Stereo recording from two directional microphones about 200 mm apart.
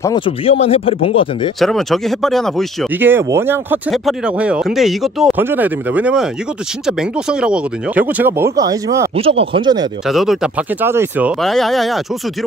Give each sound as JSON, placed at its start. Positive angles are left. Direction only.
{"t": 0.0, "sound": "speech", "side_deg": 25}
{"t": 1.6, "sound": "speech", "side_deg": 0}
{"t": 3.0, "sound": "speech", "side_deg": -10}
{"t": 9.1, "sound": "speech", "side_deg": -30}
{"t": 10.0, "sound": "speech", "side_deg": 0}